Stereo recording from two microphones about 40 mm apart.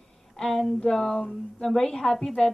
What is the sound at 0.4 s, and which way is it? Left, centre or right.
A woman's voice, centre.